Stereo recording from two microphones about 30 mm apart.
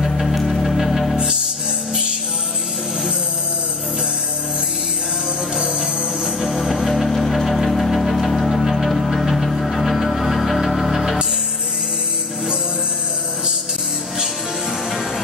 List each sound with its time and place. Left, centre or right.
0.0 s music: centre
5.6 s music: right
6.4 s music: centre